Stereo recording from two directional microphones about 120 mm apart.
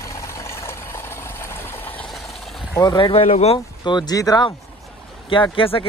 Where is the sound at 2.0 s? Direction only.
Centre (ahead or behind).